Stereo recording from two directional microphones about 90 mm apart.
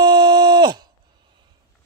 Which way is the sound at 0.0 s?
55° right (ahead or behind).